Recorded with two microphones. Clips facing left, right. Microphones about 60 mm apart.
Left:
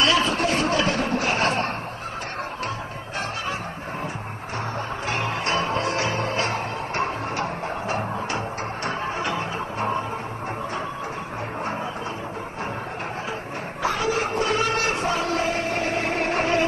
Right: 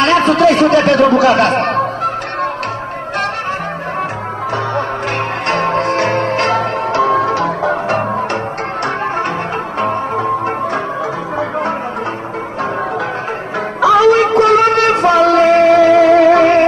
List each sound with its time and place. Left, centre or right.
0.0 s a sound: right
0.3 s speech: right
5.5 s music: right
9.8 s music: right
13.7 s music: right